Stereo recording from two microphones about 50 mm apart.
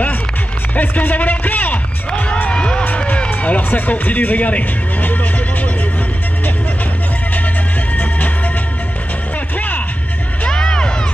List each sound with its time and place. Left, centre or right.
0.7 s music: left
7.9 s music: left
10.4 s music: centre